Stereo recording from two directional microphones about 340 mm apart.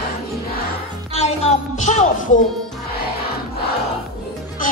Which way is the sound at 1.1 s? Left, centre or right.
Centre.